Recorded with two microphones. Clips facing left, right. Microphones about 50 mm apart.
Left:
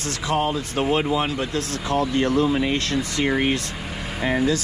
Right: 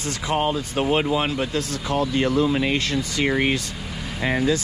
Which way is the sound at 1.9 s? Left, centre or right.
Left.